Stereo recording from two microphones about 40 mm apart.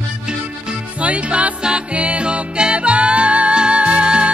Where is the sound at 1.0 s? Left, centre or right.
Right.